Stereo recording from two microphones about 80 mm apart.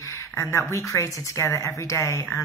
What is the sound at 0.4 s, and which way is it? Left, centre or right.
Speech, left.